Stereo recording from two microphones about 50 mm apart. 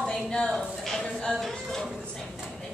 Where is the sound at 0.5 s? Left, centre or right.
Centre.